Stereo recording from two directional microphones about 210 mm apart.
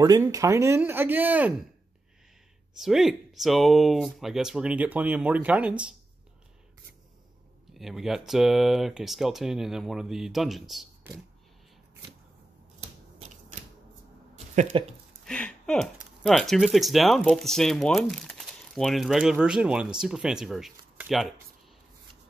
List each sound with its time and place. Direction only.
0.0 s speech: 15° right (ahead or behind)
2.8 s speech: centre (ahead or behind)
7.7 s speech: centre (ahead or behind)
14.3 s a sound: 35° right (ahead or behind)
15.2 s speech: 5° left (ahead or behind)